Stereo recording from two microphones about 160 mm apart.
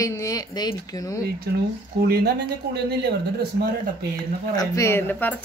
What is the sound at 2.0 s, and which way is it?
Speech, 80° right.